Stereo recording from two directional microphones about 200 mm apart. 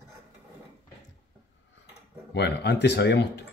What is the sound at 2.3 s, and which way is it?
Speech, 60° left (ahead or behind).